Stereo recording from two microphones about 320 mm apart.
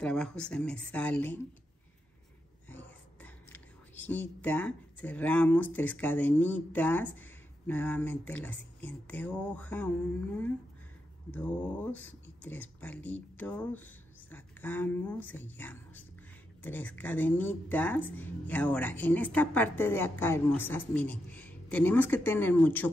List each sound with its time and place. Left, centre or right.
0.0 s speech: centre
2.7 s speech: centre
11.3 s speech: centre